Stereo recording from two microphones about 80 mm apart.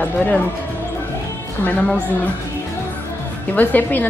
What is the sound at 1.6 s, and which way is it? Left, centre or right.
Speech, centre.